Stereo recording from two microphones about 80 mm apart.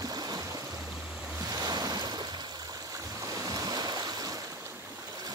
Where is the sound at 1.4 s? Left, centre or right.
Right.